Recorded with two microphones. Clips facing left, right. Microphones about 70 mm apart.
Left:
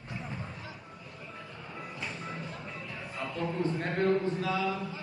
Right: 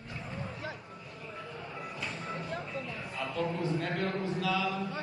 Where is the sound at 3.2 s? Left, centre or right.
Left.